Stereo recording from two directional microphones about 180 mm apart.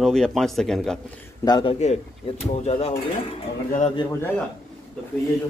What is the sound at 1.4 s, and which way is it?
A man's voice, 25° left (ahead or behind).